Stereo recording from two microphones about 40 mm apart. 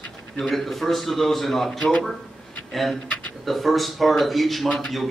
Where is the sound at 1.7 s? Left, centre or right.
Left.